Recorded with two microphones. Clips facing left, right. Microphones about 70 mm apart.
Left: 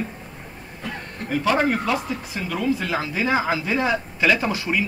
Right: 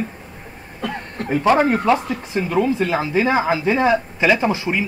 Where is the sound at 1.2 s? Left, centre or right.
Right.